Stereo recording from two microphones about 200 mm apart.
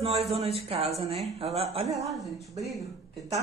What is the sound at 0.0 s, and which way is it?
Speech, 30° right (ahead or behind).